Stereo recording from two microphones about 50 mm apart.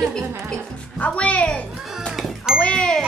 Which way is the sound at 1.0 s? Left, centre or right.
Left.